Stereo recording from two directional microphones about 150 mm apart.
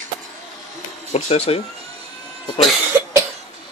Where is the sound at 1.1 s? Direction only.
45° left (ahead or behind).